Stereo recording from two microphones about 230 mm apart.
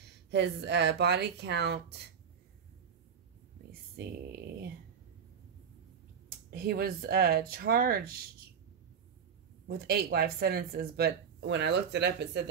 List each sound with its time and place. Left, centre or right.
0.3 s speech: right
4.0 s a sound: right
6.2 s speech: right
9.7 s speech: right